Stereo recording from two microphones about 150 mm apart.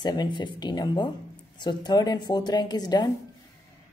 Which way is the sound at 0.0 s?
30° left (ahead or behind).